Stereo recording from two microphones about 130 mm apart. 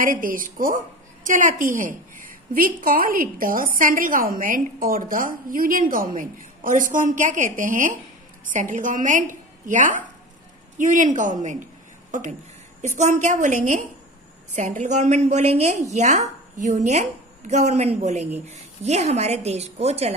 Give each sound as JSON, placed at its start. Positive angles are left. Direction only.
{"t": 0.0, "sound": "a woman's voice", "side_deg": -90}
{"t": 8.5, "sound": "a woman's voice", "side_deg": -80}
{"t": 12.8, "sound": "a woman's voice", "side_deg": -70}